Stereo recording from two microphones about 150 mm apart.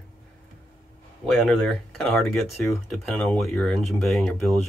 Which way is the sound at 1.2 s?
5° left (ahead or behind).